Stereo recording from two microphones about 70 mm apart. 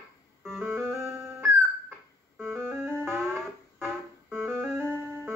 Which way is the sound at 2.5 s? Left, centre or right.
Right.